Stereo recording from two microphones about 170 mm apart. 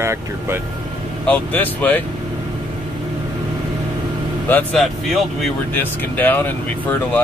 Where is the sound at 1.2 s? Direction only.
10° left (ahead or behind).